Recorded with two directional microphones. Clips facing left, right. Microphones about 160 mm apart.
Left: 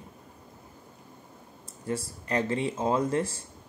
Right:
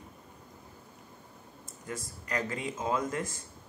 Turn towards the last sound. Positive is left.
turn(degrees=30)  # may be behind; listen again after turning